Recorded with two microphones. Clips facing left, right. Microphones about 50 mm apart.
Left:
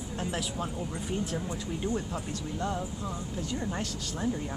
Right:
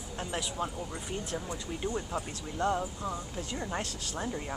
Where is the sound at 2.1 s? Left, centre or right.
Right.